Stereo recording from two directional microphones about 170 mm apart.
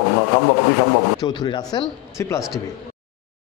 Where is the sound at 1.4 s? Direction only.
25° left (ahead or behind).